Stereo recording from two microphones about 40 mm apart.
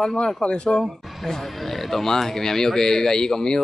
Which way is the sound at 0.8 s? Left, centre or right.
Centre.